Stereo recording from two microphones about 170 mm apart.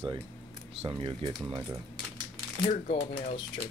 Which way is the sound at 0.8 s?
30° right (ahead or behind).